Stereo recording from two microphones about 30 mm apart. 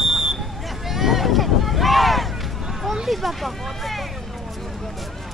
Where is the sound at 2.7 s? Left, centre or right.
Centre.